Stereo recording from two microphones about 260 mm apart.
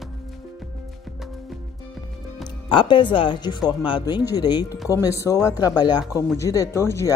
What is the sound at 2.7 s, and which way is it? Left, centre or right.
Speech, centre.